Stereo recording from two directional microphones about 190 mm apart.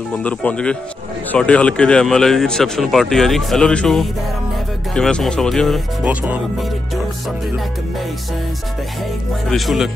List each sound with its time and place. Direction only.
0.2 s a man's voice: 5° left (ahead or behind); by 6.4 s 10° right (ahead or behind)
9.5 s a man's voice: centre (ahead or behind)